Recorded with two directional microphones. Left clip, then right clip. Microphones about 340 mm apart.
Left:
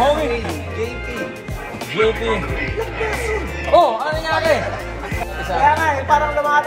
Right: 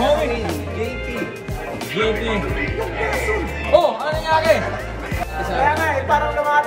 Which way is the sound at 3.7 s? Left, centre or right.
Centre.